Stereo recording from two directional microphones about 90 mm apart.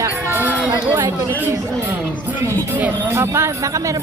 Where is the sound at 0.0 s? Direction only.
25° right (ahead or behind).